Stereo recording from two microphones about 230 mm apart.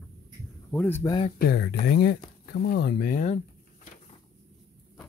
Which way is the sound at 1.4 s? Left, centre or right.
Left.